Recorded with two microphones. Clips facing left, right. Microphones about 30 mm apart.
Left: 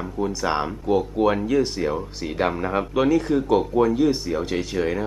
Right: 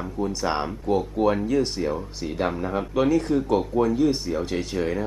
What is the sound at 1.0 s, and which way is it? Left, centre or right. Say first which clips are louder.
Speech: left 1 dB; centre.